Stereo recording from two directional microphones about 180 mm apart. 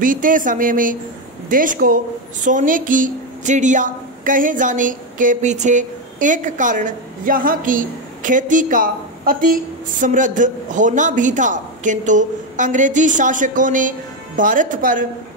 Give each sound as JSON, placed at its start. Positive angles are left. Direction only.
{"t": 0.0, "sound": "a woman's voice", "side_deg": -50}